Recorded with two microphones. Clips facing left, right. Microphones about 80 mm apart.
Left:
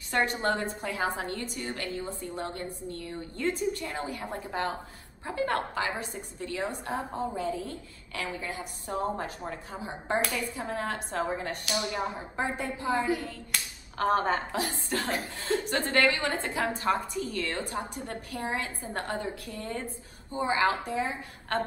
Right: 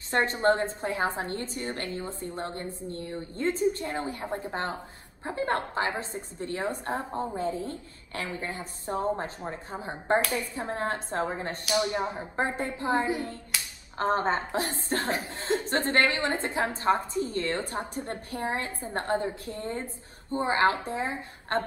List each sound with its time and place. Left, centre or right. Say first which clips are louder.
0.1 s a woman's voice: right 3 dB; right
12.8 s a woman's voice: right 1 dB; right